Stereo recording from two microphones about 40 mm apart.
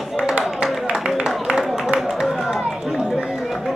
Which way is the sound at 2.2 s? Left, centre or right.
Centre.